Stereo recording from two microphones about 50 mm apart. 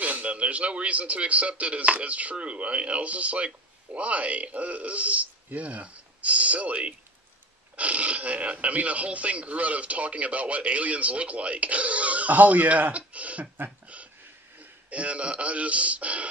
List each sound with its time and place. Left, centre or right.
0.0 s a man's voice: right
14.6 s speech: right